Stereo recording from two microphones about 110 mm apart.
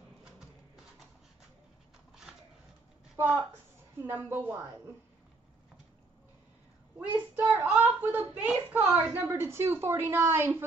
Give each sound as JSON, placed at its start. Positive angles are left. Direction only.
{"t": 4.0, "sound": "a child's voice", "side_deg": -20}
{"t": 7.0, "sound": "a child's voice", "side_deg": -15}